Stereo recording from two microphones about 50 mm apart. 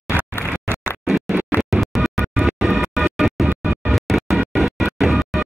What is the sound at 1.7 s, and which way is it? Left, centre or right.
Music, centre.